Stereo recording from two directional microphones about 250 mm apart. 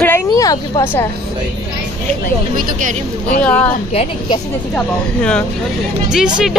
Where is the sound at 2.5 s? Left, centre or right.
Right.